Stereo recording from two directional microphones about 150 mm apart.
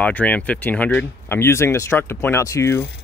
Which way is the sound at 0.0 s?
10° left (ahead or behind).